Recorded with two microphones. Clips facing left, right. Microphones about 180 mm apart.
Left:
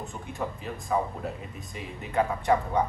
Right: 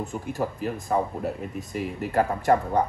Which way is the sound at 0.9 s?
50° right (ahead or behind).